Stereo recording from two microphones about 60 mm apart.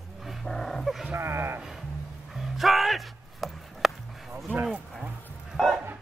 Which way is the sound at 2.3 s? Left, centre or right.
Centre.